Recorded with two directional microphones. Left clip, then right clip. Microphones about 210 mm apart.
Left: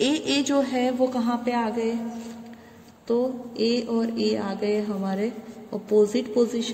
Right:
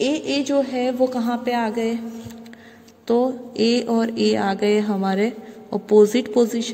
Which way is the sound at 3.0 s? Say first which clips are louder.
Right 5 dB; 40° right (ahead or behind).